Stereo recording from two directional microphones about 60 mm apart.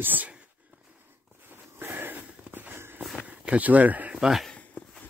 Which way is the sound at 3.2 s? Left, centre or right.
Right.